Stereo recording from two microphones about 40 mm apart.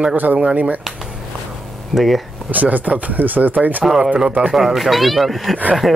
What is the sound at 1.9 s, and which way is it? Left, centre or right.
Speech, centre.